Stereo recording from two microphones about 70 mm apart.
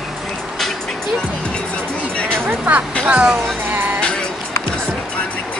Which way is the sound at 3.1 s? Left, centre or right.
Right.